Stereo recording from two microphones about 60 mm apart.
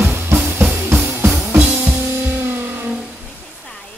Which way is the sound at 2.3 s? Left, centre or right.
Right.